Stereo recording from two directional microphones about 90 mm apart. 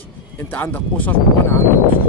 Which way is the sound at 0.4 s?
20° left (ahead or behind).